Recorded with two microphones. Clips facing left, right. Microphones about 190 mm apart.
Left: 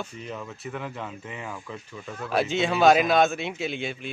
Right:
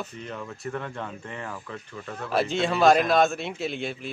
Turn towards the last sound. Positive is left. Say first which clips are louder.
# even
turn(degrees=0)  # may be behind; listen again after turning